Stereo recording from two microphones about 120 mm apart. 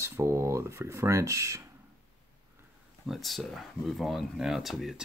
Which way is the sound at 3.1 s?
Centre (ahead or behind).